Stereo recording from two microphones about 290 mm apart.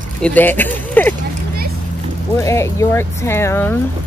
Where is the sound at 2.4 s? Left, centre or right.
Centre.